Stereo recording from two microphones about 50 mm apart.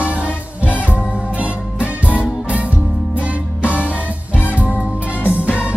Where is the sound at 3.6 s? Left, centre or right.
Right.